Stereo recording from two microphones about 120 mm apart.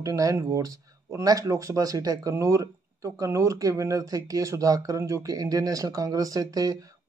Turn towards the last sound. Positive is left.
turn(degrees=-30)  # may be behind; listen again after turning